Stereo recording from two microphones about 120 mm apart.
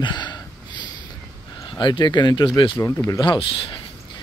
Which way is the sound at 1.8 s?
40° left (ahead or behind).